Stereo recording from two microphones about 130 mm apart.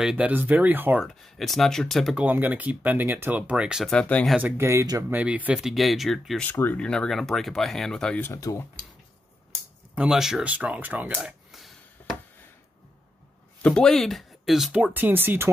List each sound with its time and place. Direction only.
0.0 s speech: 10° right (ahead or behind)
1.0 s speech: centre (ahead or behind)
2.1 s speech: 10° right (ahead or behind)
3.9 s speech: 10° left (ahead or behind)
4.4 s speech: 15° right (ahead or behind)
5.1 s speech: 10° right (ahead or behind)
6.4 s speech: 15° left (ahead or behind)
8.2 s speech: 25° left (ahead or behind)
9.9 s speech: 5° right (ahead or behind)
11.1 s a sound: centre (ahead or behind)
13.6 s speech: 10° left (ahead or behind); by 15.5 s 15° right (ahead or behind)